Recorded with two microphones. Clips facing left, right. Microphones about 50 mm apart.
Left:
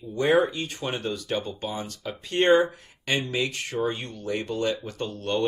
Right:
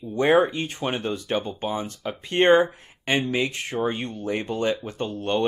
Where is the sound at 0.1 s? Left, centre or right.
Right.